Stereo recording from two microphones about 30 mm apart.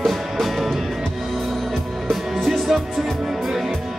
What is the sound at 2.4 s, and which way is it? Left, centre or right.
Music, centre.